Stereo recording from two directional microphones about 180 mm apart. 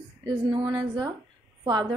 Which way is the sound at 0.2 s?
30° right (ahead or behind).